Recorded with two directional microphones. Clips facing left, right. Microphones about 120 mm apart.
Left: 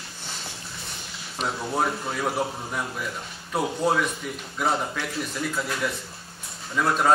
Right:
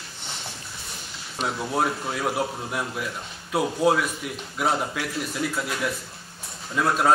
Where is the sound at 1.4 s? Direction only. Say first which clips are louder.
Right 1 dB; centre (ahead or behind).